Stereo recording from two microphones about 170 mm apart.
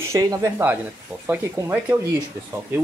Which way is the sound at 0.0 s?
20° right (ahead or behind).